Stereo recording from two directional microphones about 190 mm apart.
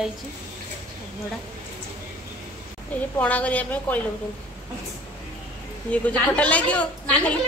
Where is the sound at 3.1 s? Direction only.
5° left (ahead or behind).